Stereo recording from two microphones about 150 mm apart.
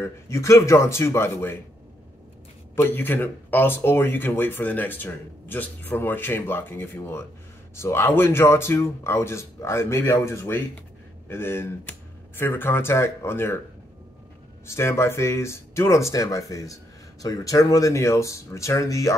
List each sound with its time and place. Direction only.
0.0 s speech: 20° left (ahead or behind)
2.7 s speech: 15° left (ahead or behind)
14.7 s speech: 15° left (ahead or behind)